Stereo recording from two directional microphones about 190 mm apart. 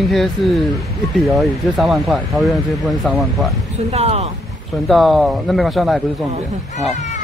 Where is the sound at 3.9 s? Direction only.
35° right (ahead or behind).